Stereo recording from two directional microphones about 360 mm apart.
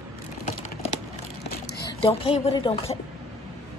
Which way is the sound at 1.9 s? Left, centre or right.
Centre.